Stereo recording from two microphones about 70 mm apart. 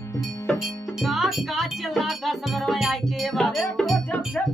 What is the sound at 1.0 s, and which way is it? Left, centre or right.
Music, centre.